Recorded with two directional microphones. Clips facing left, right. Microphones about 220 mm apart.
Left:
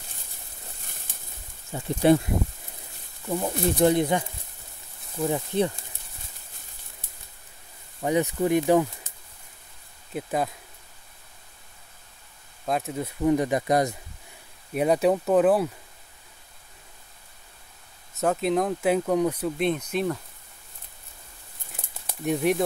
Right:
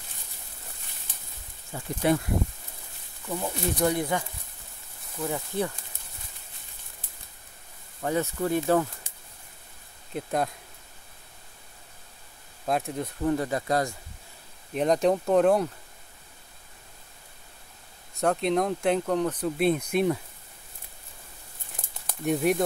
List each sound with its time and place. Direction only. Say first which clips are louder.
1.7 s speech: left 5 dB; 25° left (ahead or behind)
3.3 s speech: left 4 dB; 20° left (ahead or behind)
8.0 s speech: left 4 dB; 15° left (ahead or behind)
10.1 s speech: left 1 dB; centre (ahead or behind)
12.6 s speech: even; centre (ahead or behind); by 13.9 s 20° left (ahead or behind)
14.7 s speech: left 1 dB; 10° left (ahead or behind)
18.2 s speech: left 1 dB; 5° left (ahead or behind)
19.6 s speech: right 3 dB; 10° right (ahead or behind)
22.2 s speech: left 1 dB; centre (ahead or behind)